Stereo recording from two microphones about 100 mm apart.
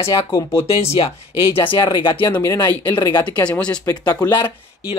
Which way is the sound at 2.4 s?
40° left (ahead or behind).